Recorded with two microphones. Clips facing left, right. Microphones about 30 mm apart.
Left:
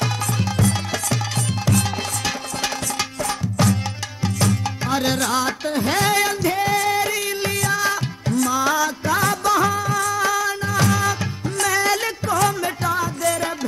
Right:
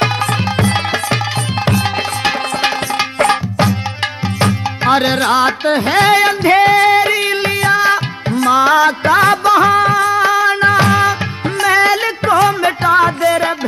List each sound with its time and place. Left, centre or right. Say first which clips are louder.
1.7 s music: right 6 dB; right
4.4 s music: right 7 dB; right